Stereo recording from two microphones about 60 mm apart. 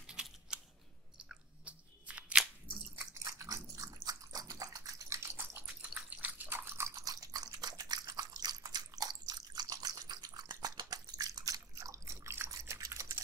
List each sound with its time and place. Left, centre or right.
0.0 s typing: centre
1.6 s crunch: right
3.0 s biting: right
5.3 s drip: right
6.9 s biting: right
12.1 s a sound: right